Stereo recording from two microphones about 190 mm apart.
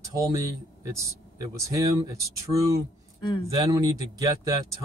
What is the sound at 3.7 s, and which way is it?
Speech, 20° right (ahead or behind).